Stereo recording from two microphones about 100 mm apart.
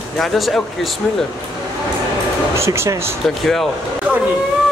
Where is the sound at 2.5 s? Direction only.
25° right (ahead or behind).